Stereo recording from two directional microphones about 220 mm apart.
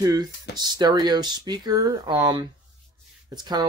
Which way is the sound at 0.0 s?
15° right (ahead or behind).